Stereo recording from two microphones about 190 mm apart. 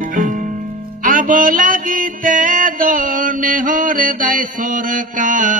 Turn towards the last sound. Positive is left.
turn(degrees=-45)  # may be behind; listen again after turning